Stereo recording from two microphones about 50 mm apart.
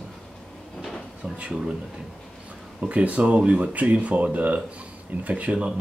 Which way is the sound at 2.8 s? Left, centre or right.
Right.